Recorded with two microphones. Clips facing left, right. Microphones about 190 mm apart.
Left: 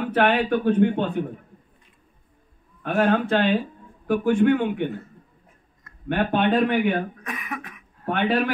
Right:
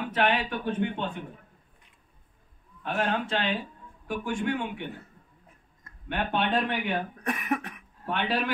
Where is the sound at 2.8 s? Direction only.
55° left (ahead or behind).